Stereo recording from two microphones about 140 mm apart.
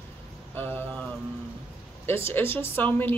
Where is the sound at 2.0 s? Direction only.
15° left (ahead or behind).